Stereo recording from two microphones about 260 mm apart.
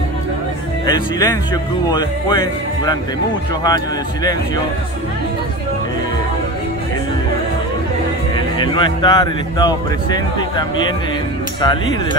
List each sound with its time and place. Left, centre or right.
0.8 s speech: centre
8.5 s speech: centre